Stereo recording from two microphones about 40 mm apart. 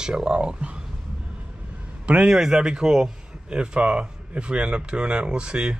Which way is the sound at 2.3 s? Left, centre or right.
Centre.